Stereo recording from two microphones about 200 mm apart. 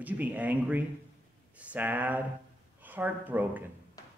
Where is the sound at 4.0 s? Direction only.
15° left (ahead or behind).